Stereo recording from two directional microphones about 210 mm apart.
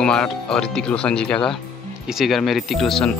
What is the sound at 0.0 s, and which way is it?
Speech, 5° left (ahead or behind).